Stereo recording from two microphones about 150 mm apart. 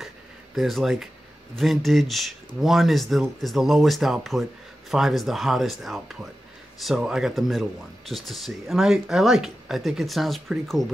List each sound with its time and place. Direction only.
0.6 s speech: centre (ahead or behind)